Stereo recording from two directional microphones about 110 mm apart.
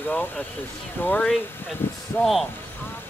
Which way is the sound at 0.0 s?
20° left (ahead or behind).